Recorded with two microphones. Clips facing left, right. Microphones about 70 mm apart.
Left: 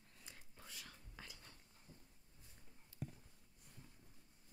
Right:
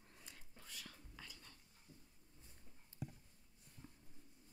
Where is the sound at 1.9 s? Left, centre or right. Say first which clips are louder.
Even; left.